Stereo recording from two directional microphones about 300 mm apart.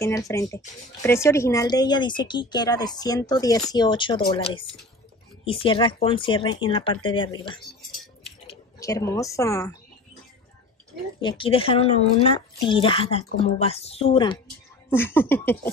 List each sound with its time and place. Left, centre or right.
0.0 s speech: centre
8.7 s speech: centre
11.1 s speech: centre